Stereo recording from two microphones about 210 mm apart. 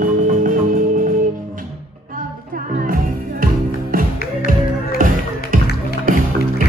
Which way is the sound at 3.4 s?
45° right (ahead or behind).